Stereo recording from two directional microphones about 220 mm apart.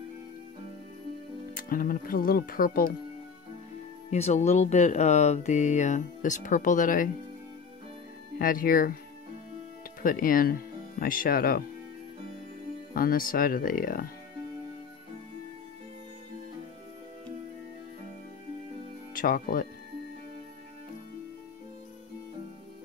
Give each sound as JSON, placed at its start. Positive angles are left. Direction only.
{"t": 1.5, "sound": "speech", "side_deg": 40}
{"t": 4.1, "sound": "speech", "side_deg": 30}
{"t": 8.4, "sound": "speech", "side_deg": 40}
{"t": 10.0, "sound": "speech", "side_deg": 40}
{"t": 12.9, "sound": "speech", "side_deg": 40}
{"t": 19.1, "sound": "speech", "side_deg": 40}